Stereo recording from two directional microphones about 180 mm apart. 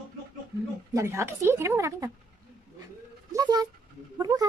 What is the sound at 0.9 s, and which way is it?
Speech, 15° right (ahead or behind).